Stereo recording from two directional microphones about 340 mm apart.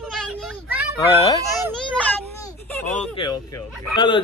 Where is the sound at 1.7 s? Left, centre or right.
Centre.